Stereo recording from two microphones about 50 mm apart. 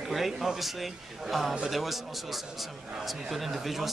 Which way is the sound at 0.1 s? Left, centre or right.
Centre.